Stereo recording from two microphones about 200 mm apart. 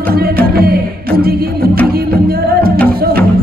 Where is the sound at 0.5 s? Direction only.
50° right (ahead or behind).